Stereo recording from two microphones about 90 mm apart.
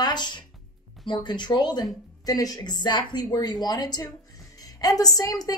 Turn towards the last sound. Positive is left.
turn(degrees=45)  # may be behind; listen again after turning